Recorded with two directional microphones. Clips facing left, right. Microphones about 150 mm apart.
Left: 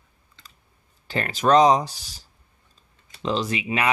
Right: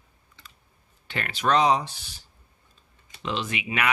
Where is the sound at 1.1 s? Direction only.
40° left (ahead or behind).